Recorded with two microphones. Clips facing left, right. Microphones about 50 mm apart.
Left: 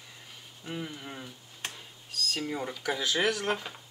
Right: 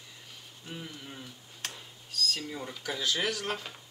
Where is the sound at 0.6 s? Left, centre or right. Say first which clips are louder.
Left 5 dB; centre.